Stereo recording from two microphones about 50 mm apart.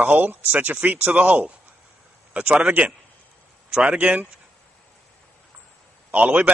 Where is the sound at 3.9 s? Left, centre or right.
Right.